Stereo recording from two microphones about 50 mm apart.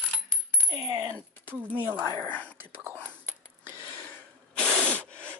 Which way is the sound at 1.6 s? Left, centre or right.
Right.